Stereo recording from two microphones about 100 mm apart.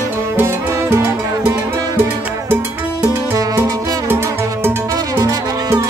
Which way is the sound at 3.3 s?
35° right (ahead or behind).